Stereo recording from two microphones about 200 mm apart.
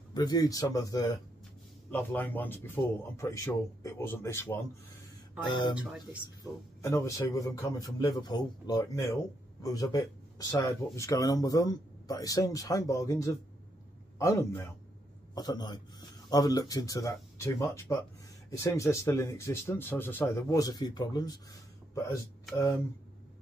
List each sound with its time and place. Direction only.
0.1 s speech: 20° left (ahead or behind)
5.5 s speech: 25° left (ahead or behind)
6.8 s speech: 15° left (ahead or behind)